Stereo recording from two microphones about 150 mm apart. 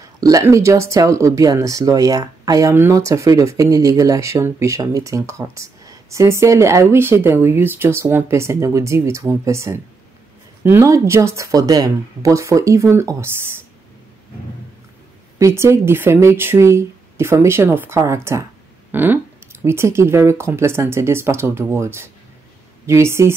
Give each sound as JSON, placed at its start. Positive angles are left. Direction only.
{"t": 0.2, "sound": "speech", "side_deg": -20}
{"t": 15.3, "sound": "speech", "side_deg": -20}
{"t": 18.9, "sound": "a sound", "side_deg": -15}
{"t": 19.6, "sound": "speech", "side_deg": -15}